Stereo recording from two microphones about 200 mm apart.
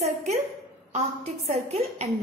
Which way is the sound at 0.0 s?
30° right (ahead or behind).